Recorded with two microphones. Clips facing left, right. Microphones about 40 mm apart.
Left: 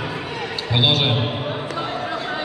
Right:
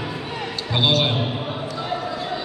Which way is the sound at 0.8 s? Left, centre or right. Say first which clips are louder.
Left 1 dB; centre.